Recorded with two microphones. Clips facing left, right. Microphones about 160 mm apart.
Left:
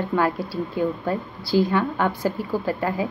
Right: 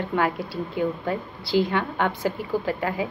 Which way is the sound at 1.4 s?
20° right (ahead or behind).